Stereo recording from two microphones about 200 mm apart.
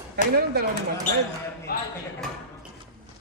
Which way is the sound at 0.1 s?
50° right (ahead or behind).